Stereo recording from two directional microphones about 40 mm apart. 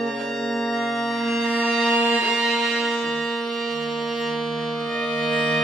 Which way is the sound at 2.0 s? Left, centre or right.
Right.